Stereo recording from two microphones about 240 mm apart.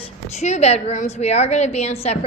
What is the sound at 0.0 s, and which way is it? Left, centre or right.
A woman's voice, left.